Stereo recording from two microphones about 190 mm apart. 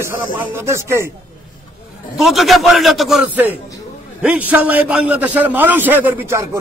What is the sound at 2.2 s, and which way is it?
A man's voice, centre (ahead or behind).